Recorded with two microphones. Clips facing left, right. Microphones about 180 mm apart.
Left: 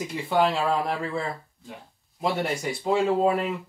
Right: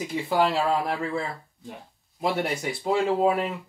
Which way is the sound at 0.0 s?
Centre (ahead or behind).